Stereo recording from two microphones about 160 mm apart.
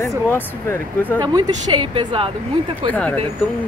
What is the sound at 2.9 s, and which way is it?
Speech, 10° left (ahead or behind).